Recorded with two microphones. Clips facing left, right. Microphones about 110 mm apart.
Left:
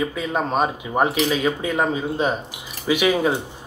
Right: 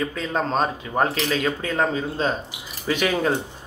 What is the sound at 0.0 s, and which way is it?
Speech, 10° left (ahead or behind).